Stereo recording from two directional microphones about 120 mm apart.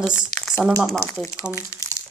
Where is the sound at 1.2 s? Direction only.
25° left (ahead or behind).